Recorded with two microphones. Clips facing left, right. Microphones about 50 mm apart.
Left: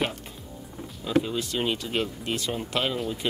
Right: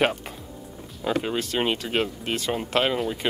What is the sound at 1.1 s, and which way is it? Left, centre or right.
Speech, right.